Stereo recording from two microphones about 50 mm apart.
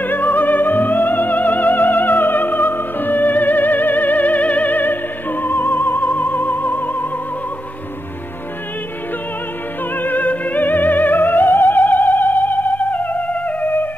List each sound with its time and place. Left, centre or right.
0.0 s music: left
9.9 s music: left